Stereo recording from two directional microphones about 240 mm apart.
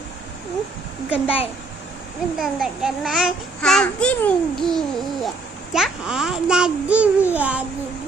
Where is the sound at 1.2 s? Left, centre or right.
Left.